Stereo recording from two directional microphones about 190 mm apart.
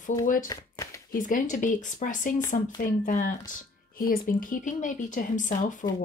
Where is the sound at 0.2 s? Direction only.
45° left (ahead or behind).